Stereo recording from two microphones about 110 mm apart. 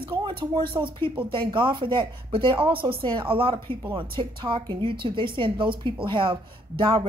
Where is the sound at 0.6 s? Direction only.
50° right (ahead or behind).